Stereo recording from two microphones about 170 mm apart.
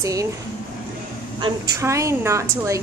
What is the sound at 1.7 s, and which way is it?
A woman's voice, 20° right (ahead or behind).